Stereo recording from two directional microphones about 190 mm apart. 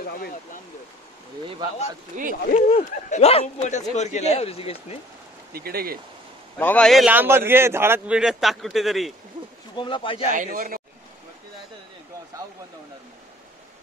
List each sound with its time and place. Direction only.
0.0 s speech: 50° left (ahead or behind)
2.1 s a man's voice: 40° right (ahead or behind)
2.5 s a man's voice: 40° left (ahead or behind)
5.5 s a man's voice: 55° right (ahead or behind)
6.6 s a man's voice: 5° left (ahead or behind)
9.8 s speech: 25° left (ahead or behind)
10.3 s a man's voice: 45° right (ahead or behind)